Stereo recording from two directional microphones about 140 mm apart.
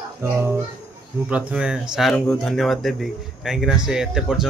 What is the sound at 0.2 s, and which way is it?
Speech, 15° right (ahead or behind).